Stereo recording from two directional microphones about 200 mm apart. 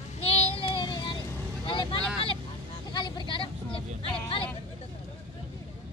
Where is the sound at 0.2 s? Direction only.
30° left (ahead or behind).